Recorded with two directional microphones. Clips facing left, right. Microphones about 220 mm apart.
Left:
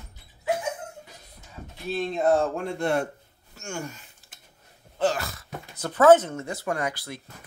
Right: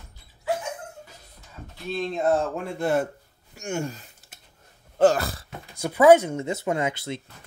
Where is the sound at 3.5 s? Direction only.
15° right (ahead or behind).